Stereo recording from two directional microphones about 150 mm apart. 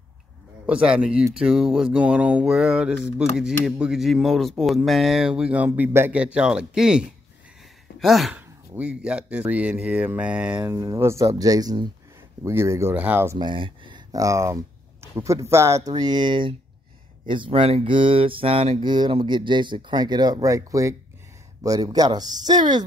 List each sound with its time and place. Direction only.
0.7 s speech: 5° right (ahead or behind)
13.4 s speech: 35° right (ahead or behind)
15.9 s speech: 30° right (ahead or behind)